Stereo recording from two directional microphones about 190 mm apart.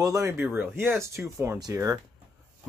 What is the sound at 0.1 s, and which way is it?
Speech, 15° right (ahead or behind).